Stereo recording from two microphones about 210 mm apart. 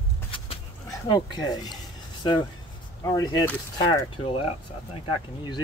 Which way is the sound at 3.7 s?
20° left (ahead or behind).